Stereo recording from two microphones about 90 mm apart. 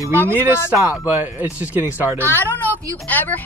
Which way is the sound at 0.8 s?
20° right (ahead or behind).